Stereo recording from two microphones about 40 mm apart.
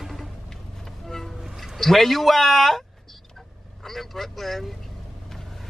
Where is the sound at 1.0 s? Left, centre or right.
Centre.